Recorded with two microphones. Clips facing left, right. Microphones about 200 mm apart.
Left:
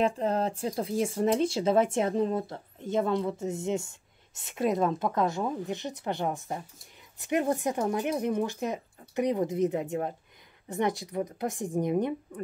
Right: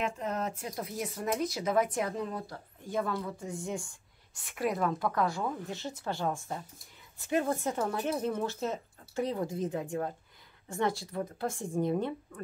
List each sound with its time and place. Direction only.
0.0 s speech: 30° left (ahead or behind); by 12.4 s 15° left (ahead or behind)